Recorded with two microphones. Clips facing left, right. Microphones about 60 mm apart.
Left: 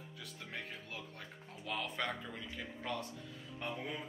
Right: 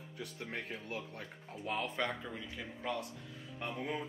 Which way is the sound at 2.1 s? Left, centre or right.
Centre.